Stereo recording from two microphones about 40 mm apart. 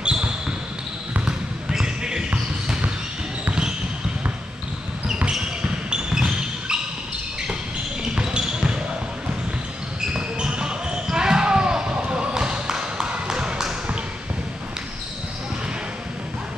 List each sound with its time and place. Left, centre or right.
0.0 s basketball bounce: right
5.9 s basketball bounce: right
8.0 s basketball bounce: right
10.1 s basketball bounce: right
13.3 s a sound: centre